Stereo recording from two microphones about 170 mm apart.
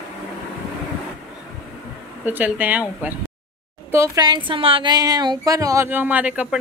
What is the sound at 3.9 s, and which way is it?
A woman's voice, 20° right (ahead or behind).